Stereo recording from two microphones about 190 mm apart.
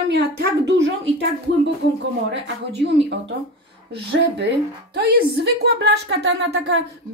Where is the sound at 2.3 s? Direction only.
65° right (ahead or behind).